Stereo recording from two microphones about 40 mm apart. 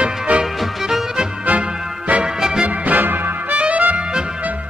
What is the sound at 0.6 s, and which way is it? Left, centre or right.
Music, centre.